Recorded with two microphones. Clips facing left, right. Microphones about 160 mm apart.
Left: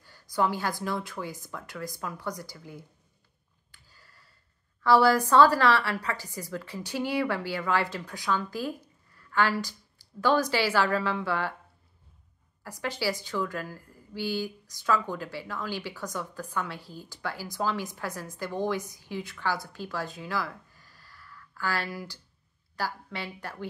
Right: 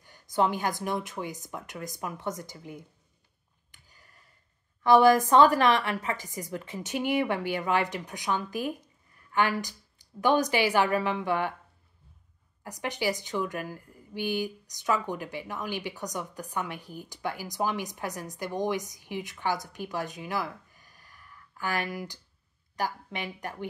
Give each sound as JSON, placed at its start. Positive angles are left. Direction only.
{"t": 0.0, "sound": "a woman's voice", "side_deg": -20}
{"t": 3.7, "sound": "a sound", "side_deg": -20}
{"t": 4.8, "sound": "a woman's voice", "side_deg": -20}
{"t": 12.6, "sound": "a woman's voice", "side_deg": -20}